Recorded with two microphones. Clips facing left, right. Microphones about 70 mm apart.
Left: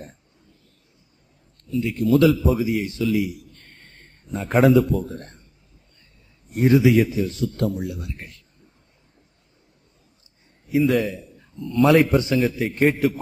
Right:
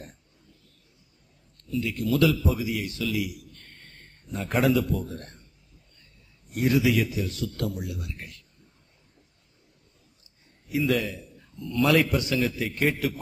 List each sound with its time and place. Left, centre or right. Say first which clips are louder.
1.6 s a man's voice: left 5 dB; left
6.5 s a man's voice: left 7 dB; left
10.7 s a man's voice: left 6 dB; left